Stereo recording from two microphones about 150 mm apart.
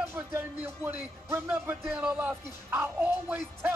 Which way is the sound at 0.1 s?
15° right (ahead or behind).